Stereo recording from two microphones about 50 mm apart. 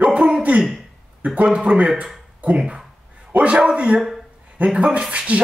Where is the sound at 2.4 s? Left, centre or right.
Centre.